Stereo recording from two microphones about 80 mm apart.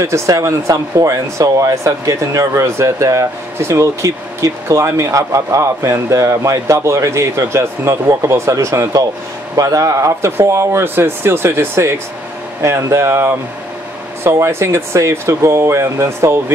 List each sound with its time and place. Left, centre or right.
0.0 s speech: right